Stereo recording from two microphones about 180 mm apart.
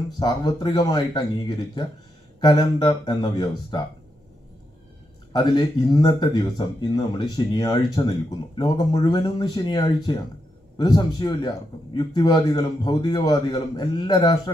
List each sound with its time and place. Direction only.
0.2 s speech: 20° left (ahead or behind)
5.3 s speech: 25° left (ahead or behind)